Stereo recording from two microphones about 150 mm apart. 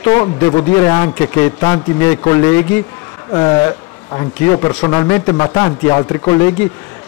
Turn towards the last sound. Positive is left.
turn(degrees=20)  # may be behind; listen again after turning